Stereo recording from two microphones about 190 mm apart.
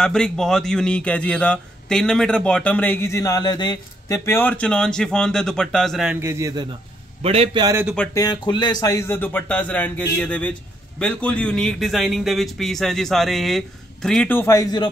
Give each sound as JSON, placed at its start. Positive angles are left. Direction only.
{"t": 0.0, "sound": "speech", "side_deg": 5}
{"t": 6.2, "sound": "a man's voice", "side_deg": -15}
{"t": 7.2, "sound": "a man's voice", "side_deg": -30}
{"t": 8.1, "sound": "speech", "side_deg": 20}